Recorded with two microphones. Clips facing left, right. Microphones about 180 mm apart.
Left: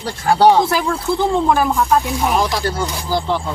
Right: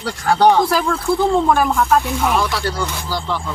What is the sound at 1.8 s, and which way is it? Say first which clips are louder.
Speech: even; 15° left (ahead or behind).